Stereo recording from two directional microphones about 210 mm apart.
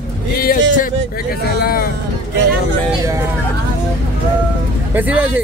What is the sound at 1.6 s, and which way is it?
Speech, 45° left (ahead or behind).